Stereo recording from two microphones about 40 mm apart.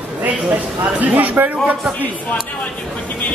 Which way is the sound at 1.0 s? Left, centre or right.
Right.